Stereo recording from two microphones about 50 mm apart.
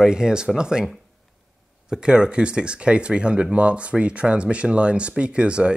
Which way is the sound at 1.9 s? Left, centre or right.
Centre.